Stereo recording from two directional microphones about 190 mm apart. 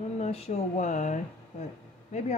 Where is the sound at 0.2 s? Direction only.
35° left (ahead or behind).